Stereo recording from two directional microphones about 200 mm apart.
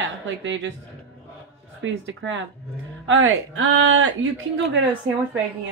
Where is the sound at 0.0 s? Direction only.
65° right (ahead or behind).